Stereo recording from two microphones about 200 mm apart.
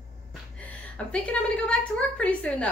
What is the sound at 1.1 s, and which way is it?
Speech, 5° left (ahead or behind).